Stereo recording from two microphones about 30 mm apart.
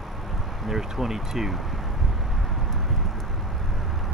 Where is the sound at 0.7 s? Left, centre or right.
Centre.